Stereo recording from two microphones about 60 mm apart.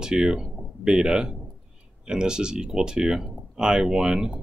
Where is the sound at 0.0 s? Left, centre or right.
Centre.